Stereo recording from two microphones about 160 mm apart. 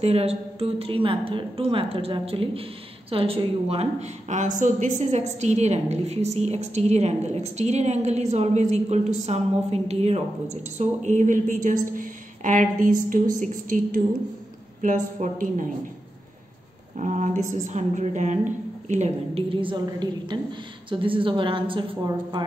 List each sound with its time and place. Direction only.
0.0 s a woman's voice: 40° right (ahead or behind)
16.9 s a woman's voice: 50° right (ahead or behind); by 22.4 s 30° right (ahead or behind)